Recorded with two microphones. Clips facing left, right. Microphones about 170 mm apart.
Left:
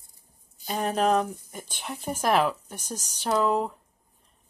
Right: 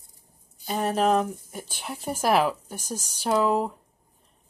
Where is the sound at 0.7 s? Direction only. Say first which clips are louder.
Right 1 dB; centre (ahead or behind).